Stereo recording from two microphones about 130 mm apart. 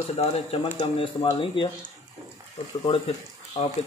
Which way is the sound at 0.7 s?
45° left (ahead or behind).